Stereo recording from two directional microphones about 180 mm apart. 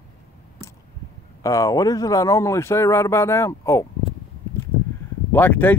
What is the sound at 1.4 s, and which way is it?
Speech, 20° left (ahead or behind).